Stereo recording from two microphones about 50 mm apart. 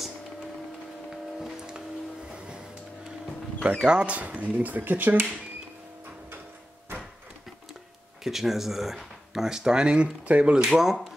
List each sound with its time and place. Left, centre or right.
2.2 s car: centre
3.7 s speech: centre; by 5.2 s right
8.2 s speech: centre; by 10.6 s right
10.7 s speech: centre